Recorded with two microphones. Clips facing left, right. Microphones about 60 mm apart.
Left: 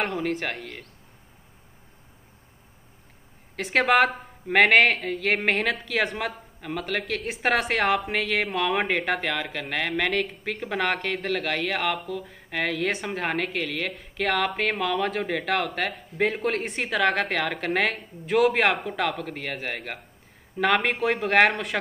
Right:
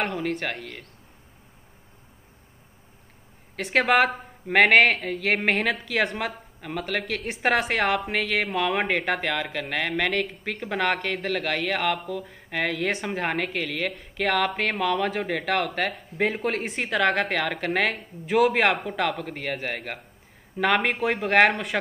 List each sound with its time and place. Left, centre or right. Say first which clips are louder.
0.0 s speech: even; centre
3.5 s speech: even; centre